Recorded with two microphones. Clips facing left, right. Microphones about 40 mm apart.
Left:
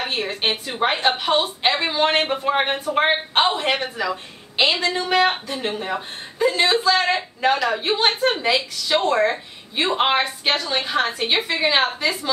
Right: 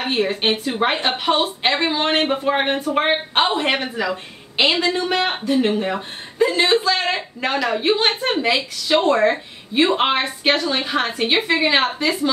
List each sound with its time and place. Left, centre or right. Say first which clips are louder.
0.0 s a woman's voice: right 4 dB; centre